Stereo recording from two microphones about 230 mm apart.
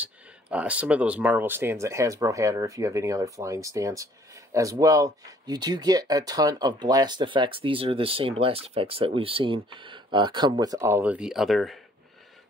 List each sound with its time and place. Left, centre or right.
0.0 s speech: centre